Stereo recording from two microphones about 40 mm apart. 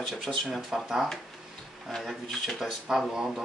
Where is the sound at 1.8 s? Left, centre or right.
Centre.